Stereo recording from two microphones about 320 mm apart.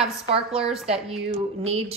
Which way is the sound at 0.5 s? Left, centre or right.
Centre.